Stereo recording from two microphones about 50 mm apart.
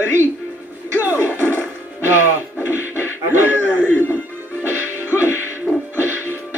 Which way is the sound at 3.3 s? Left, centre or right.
Right.